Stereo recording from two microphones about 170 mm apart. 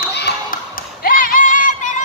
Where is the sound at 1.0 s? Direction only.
55° left (ahead or behind).